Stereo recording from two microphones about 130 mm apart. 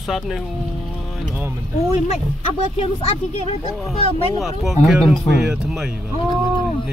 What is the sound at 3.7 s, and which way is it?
Speech, centre (ahead or behind).